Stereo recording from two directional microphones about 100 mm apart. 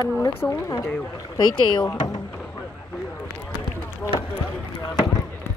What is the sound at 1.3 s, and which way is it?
Speech, 50° left (ahead or behind).